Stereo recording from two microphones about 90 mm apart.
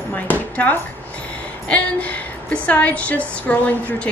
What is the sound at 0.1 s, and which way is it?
A woman's voice, 20° left (ahead or behind).